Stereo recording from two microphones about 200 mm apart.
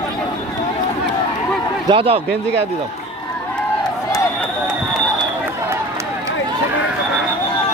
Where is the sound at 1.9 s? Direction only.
30° right (ahead or behind).